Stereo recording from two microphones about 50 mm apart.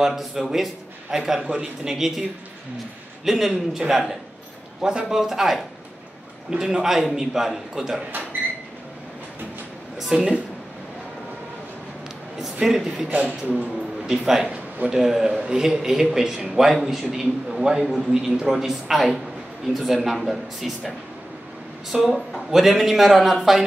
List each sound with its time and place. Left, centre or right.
0.0 s a man's voice: centre
3.3 s a man's voice: centre
6.6 s a man's voice: centre
9.9 s speech: centre
12.4 s a man's voice: centre
13.1 s speech: right
14.2 s a man's voice: centre
21.9 s a man's voice: centre